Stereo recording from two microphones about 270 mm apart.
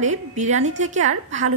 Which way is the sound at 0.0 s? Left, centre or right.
Right.